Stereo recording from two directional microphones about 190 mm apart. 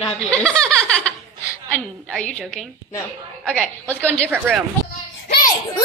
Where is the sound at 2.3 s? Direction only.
5° left (ahead or behind).